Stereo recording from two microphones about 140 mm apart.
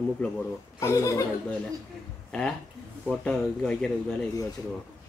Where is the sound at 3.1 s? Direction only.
5° left (ahead or behind).